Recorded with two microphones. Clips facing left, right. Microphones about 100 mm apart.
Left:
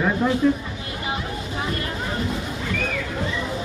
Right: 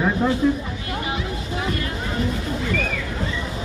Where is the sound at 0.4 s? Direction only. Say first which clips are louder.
Left 1 dB; 10° right (ahead or behind).